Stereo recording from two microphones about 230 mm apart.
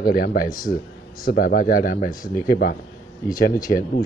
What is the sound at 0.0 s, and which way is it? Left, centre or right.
Speech, left.